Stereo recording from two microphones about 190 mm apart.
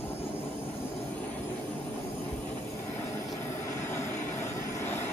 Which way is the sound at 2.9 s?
15° left (ahead or behind).